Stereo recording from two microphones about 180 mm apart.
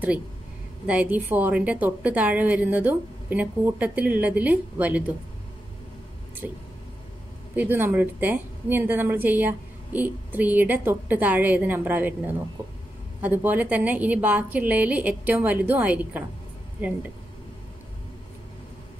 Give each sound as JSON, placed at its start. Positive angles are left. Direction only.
{"t": 0.8, "sound": "a woman's voice", "side_deg": -10}
{"t": 6.4, "sound": "a woman's voice", "side_deg": -10}